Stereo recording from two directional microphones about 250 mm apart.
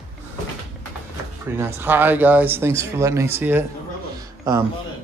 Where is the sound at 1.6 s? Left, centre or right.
Centre.